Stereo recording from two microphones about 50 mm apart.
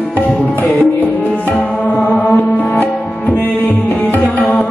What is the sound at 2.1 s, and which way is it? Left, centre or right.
Music, left.